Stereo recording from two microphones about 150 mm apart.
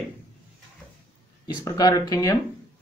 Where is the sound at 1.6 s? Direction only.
25° left (ahead or behind).